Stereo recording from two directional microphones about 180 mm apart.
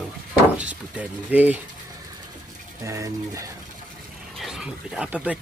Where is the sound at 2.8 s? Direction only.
15° right (ahead or behind).